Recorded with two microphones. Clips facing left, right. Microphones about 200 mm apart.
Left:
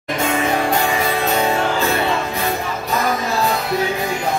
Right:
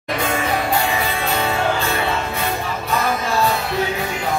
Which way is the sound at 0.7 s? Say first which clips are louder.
Left 2 dB; 40° left (ahead or behind).